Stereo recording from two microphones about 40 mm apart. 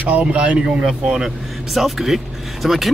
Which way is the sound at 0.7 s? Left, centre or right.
Centre.